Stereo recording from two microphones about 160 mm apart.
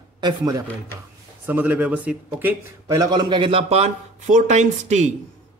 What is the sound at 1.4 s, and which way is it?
Speech, 10° right (ahead or behind).